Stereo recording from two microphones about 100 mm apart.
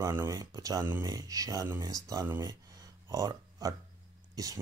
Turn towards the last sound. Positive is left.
turn(degrees=-35)  # may be behind; listen again after turning